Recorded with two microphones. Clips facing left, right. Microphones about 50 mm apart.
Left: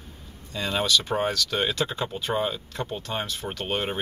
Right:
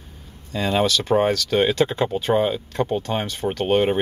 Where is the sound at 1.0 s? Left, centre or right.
Right.